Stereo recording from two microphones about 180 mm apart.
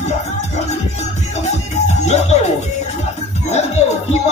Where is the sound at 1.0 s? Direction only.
40° left (ahead or behind).